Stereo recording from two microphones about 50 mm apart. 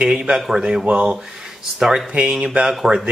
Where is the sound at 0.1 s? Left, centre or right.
Centre.